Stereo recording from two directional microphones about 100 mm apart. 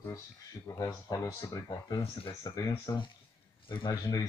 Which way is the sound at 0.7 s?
35° left (ahead or behind).